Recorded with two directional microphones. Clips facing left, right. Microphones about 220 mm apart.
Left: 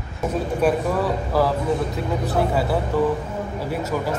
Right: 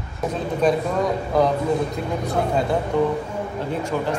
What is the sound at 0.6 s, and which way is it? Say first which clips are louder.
Speech: right 1 dB; 5° left (ahead or behind).